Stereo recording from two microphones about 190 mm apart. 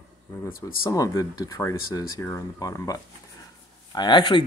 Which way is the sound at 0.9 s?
15° left (ahead or behind).